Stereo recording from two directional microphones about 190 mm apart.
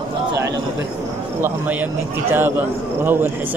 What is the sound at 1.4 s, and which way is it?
Speech, 10° right (ahead or behind).